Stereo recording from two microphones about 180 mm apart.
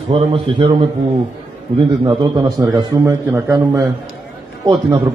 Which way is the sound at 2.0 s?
20° right (ahead or behind).